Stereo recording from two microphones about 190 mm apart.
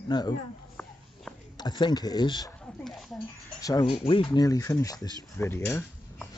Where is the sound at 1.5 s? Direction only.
20° left (ahead or behind).